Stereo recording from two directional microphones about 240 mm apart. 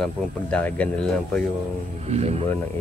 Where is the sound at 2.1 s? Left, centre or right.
Right.